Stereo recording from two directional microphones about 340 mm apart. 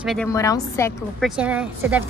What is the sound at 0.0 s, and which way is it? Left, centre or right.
A woman's voice, centre.